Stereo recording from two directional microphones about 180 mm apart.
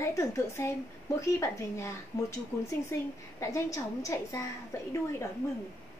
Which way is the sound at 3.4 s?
15° left (ahead or behind).